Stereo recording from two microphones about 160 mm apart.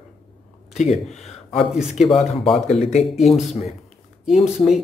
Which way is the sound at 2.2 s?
40° left (ahead or behind).